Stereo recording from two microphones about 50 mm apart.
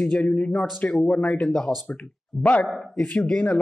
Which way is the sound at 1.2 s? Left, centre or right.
Centre.